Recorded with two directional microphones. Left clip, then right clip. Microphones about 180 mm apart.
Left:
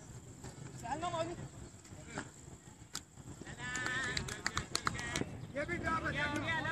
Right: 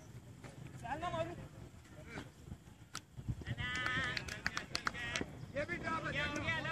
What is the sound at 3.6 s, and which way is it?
Bleat, 25° right (ahead or behind).